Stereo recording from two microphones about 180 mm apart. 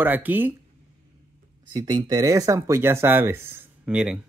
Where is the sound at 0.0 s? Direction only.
10° right (ahead or behind).